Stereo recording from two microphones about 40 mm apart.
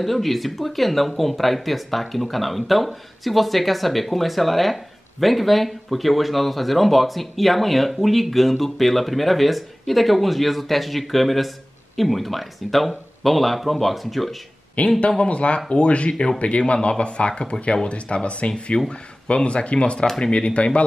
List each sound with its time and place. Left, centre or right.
0.0 s speech: centre
14.9 s speech: left